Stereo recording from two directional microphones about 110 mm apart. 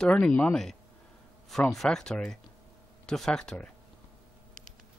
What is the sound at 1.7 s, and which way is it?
Speech, 5° left (ahead or behind).